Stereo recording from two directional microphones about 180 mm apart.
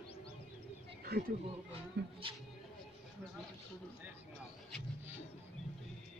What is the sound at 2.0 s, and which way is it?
Speech, 65° right (ahead or behind).